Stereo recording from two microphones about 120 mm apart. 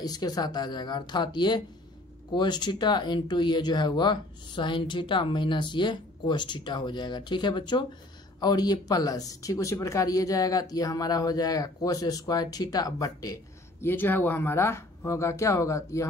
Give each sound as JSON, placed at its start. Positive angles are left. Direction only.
{"t": 0.0, "sound": "speech", "side_deg": 35}
{"t": 13.8, "sound": "speech", "side_deg": 15}